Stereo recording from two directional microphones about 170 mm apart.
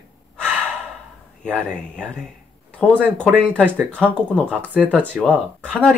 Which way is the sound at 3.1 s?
10° right (ahead or behind).